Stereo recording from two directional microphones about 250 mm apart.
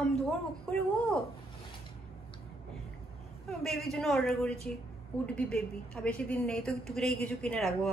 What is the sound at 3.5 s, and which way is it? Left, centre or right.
A woman's voice, centre.